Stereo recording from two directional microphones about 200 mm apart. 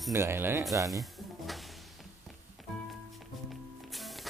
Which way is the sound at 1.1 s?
Centre (ahead or behind).